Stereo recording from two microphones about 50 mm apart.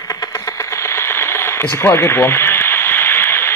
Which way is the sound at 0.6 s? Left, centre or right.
Left.